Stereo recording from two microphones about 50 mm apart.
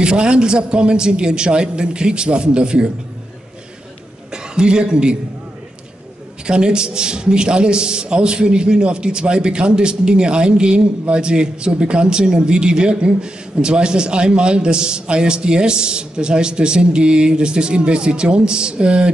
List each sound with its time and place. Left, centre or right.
0.0 s a man's voice: centre
4.3 s a man's voice: centre
6.4 s a man's voice: centre